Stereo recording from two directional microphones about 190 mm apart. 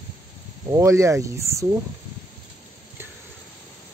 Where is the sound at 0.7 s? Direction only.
15° right (ahead or behind).